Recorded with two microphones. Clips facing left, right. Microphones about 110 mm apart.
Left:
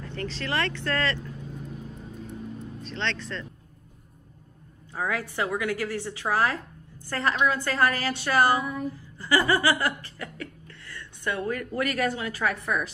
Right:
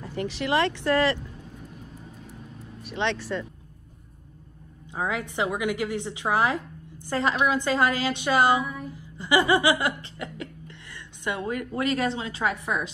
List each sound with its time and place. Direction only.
0.0 s a woman's voice: 15° right (ahead or behind)
2.8 s a woman's voice: 15° right (ahead or behind)
4.9 s a woman's voice: 20° right (ahead or behind)
8.9 s chuckle: 15° right (ahead or behind)